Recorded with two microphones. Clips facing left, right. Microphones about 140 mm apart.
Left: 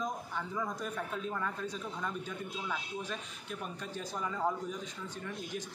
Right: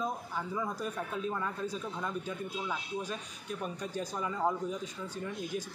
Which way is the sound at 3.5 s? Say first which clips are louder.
Right 4 dB; 40° right (ahead or behind).